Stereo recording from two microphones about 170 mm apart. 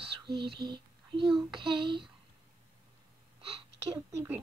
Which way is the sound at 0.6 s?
25° right (ahead or behind).